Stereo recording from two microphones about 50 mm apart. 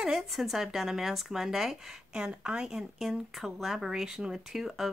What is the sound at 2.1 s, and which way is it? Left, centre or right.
Speech, centre.